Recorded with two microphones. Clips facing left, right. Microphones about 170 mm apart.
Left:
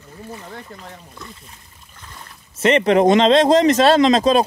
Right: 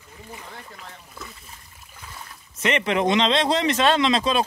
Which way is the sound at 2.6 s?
40° left (ahead or behind).